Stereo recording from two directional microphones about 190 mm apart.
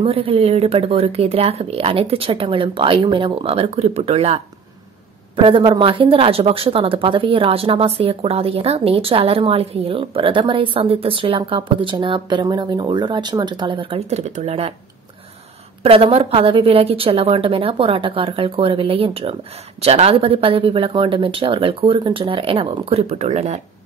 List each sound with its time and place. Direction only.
0.0 s speech: 30° right (ahead or behind)
15.8 s speech: 30° right (ahead or behind)